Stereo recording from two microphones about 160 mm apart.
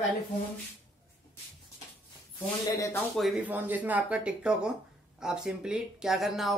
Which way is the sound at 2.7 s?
20° left (ahead or behind).